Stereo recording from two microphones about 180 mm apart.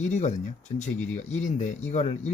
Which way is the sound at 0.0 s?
40° left (ahead or behind).